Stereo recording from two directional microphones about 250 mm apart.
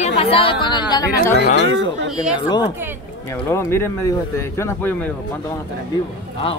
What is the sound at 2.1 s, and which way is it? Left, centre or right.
Speech, centre.